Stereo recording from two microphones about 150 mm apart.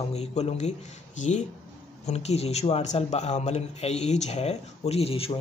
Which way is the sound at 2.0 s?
45° left (ahead or behind).